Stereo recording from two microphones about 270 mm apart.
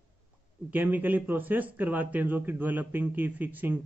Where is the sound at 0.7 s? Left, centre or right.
Centre.